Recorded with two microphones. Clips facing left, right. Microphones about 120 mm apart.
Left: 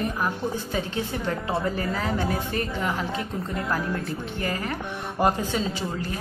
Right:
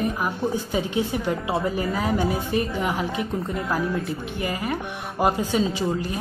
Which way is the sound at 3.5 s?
Centre (ahead or behind).